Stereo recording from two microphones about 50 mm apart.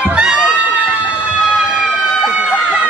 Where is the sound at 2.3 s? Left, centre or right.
Centre.